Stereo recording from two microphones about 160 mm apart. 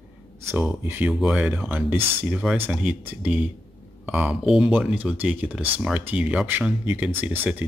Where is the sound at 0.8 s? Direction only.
10° right (ahead or behind).